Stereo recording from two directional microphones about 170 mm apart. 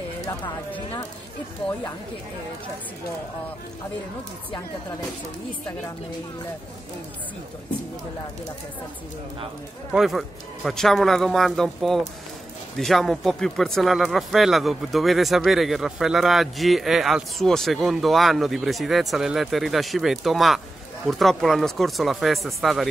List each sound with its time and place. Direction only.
9.9 s speech: centre (ahead or behind)